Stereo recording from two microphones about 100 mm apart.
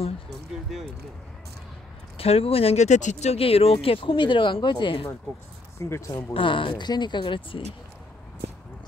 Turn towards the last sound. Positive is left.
turn(degrees=55)  # may be behind; listen again after turning